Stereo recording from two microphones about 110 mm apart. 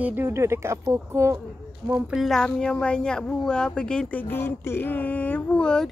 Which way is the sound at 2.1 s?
Centre (ahead or behind).